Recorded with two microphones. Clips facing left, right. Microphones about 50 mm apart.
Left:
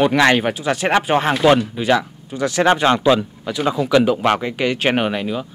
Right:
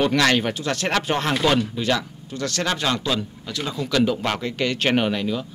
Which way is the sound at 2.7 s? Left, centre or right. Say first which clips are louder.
Left 10 dB; left.